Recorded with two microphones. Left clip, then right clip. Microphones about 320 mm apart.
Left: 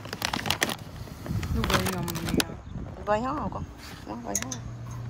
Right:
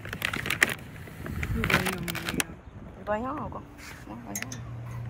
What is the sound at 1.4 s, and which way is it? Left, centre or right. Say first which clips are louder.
Speech: right 1 dB; centre.